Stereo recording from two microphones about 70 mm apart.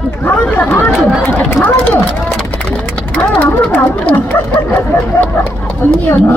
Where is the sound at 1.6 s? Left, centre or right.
Left.